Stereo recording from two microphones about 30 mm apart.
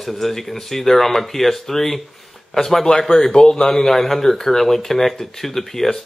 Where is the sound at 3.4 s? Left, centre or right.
Left.